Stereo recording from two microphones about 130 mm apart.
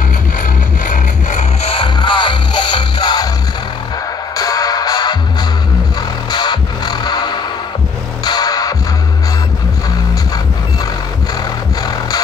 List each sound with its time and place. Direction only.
0.4 s music: 90° left
1.6 s music: 45° left (ahead or behind)
4.4 s music: 30° left (ahead or behind)
6.3 s music: 35° left (ahead or behind)
11.8 s music: 30° left (ahead or behind)